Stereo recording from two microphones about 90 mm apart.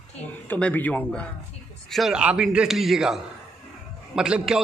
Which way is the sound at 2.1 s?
10° right (ahead or behind).